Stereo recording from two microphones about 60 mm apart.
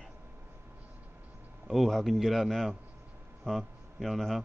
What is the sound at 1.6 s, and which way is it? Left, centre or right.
Speech, centre.